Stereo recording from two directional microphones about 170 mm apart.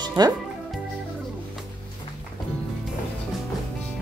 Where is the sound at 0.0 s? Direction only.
25° right (ahead or behind).